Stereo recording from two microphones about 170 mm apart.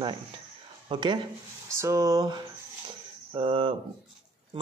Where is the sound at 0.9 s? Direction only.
25° right (ahead or behind).